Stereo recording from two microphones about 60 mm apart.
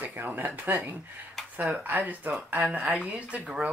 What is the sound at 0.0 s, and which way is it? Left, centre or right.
Speech, right.